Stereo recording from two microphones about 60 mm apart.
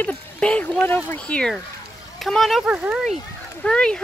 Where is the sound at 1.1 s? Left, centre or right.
Left.